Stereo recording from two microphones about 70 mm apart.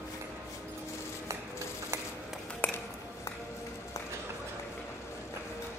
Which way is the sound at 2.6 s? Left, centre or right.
Left.